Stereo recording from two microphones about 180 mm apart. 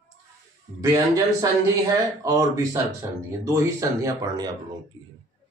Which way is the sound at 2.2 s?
20° right (ahead or behind).